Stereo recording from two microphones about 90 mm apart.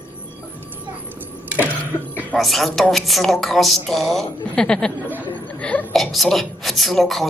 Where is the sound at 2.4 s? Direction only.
Centre (ahead or behind).